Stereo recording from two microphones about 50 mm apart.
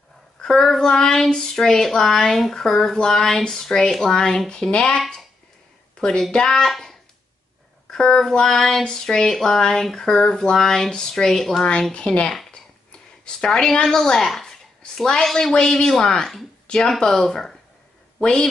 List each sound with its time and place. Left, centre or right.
0.4 s child singing: centre
5.9 s speech: centre
6.3 s child singing: centre
11.9 s speech: left
12.4 s a sound: centre
13.5 s child singing: centre
15.2 s speech: centre
15.5 s child singing: centre
16.6 s speech: centre
17.0 s child singing: centre